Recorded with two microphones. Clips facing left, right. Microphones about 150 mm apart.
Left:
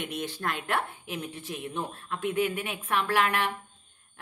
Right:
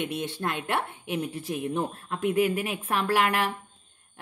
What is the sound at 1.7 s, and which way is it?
A woman's voice, 40° right (ahead or behind).